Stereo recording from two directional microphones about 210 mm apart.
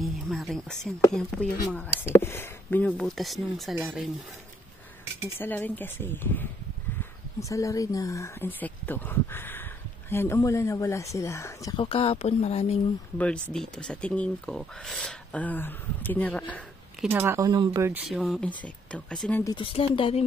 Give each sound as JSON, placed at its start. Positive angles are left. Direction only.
{"t": 0.0, "sound": "speech", "side_deg": 0}
{"t": 5.4, "sound": "speech", "side_deg": 10}
{"t": 13.2, "sound": "speech", "side_deg": 5}
{"t": 17.1, "sound": "speech", "side_deg": -10}
{"t": 18.0, "sound": "speech", "side_deg": 0}
{"t": 19.4, "sound": "speech", "side_deg": 25}